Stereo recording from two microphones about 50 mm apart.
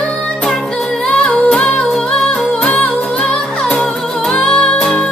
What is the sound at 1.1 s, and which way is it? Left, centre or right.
Singing, left.